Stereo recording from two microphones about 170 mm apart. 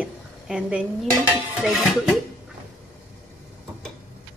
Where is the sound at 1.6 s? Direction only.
5° right (ahead or behind).